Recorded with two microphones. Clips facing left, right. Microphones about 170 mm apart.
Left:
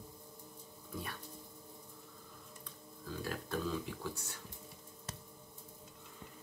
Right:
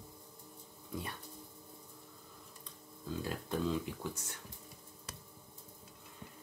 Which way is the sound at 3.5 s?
20° right (ahead or behind).